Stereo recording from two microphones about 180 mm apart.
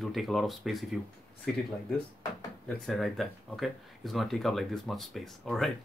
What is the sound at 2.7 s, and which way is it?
Speech, centre (ahead or behind).